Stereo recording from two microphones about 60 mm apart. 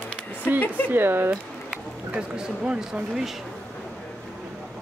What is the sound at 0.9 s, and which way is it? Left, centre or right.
Speech, right.